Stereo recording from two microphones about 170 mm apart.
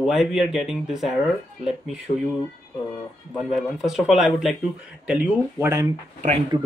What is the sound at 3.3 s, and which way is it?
Speech, centre (ahead or behind).